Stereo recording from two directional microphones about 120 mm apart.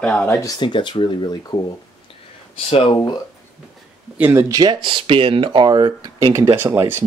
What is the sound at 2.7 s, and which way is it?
Speech, 50° left (ahead or behind).